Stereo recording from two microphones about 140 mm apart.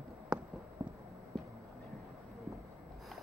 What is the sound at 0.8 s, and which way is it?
Clip-clop, 25° right (ahead or behind).